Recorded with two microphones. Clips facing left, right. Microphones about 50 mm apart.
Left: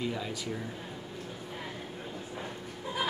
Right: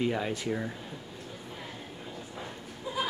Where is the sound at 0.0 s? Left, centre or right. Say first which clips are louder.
Right 5 dB; right.